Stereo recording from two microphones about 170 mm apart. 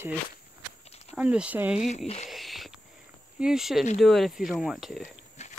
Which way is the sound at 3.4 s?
5° right (ahead or behind).